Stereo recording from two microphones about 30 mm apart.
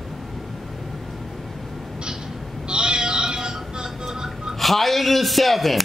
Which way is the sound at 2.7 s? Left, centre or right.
Right.